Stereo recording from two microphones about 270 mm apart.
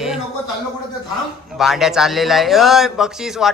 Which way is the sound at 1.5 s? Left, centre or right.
Centre.